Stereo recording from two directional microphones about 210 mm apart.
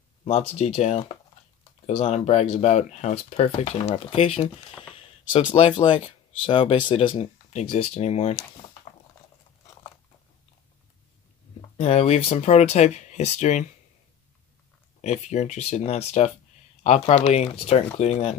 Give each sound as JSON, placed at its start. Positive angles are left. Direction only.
{"t": 0.2, "sound": "speech", "side_deg": 30}
{"t": 11.7, "sound": "speech", "side_deg": 30}
{"t": 15.0, "sound": "speech", "side_deg": 35}